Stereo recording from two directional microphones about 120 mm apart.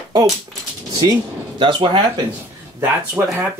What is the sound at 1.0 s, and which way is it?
Speech, 40° right (ahead or behind).